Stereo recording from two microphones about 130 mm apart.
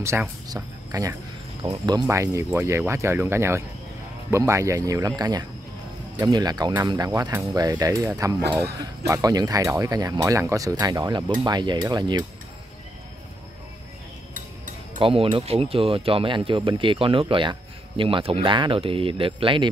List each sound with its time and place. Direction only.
0.0 s speech: 20° right (ahead or behind)
15.0 s speech: 40° right (ahead or behind)